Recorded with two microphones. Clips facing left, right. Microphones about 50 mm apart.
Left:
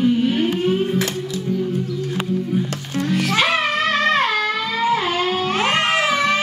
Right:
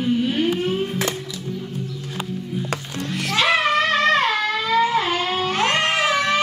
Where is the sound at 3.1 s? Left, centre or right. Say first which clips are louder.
Even; centre.